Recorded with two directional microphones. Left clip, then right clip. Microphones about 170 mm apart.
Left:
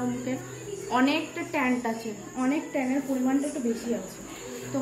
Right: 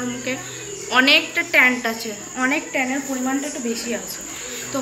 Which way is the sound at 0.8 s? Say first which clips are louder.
Right 10 dB; 40° left (ahead or behind).